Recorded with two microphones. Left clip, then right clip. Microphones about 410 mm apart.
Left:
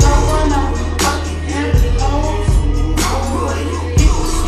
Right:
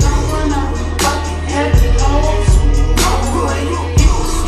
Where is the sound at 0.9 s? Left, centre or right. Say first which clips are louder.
Right 1 dB; centre.